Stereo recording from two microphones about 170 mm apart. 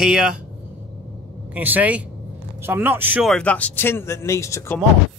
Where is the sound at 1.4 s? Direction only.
10° right (ahead or behind).